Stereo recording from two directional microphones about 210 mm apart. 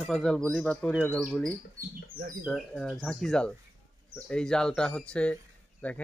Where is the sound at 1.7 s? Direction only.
40° right (ahead or behind).